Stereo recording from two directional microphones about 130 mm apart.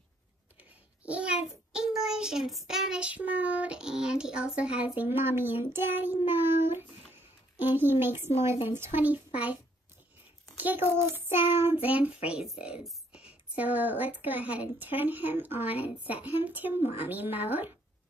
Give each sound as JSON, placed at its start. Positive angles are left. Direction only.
{"t": 1.0, "sound": "child singing", "side_deg": -10}
{"t": 7.5, "sound": "speech", "side_deg": -15}
{"t": 10.6, "sound": "speech", "side_deg": -15}